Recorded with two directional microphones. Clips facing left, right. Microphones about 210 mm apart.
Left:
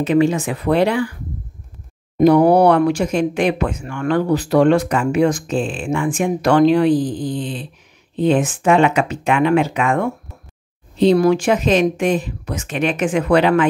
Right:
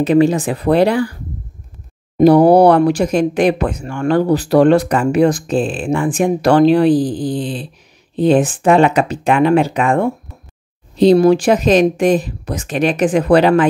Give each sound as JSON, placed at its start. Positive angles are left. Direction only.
{"t": 0.0, "sound": "speech", "side_deg": -35}
{"t": 2.1, "sound": "speech", "side_deg": -35}